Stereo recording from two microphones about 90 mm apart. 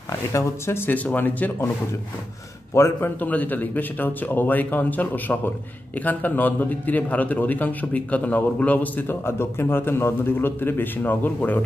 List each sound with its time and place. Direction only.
0.3 s a man's voice: 30° left (ahead or behind)
2.7 s a man's voice: 30° left (ahead or behind)
3.2 s a man's voice: 20° left (ahead or behind)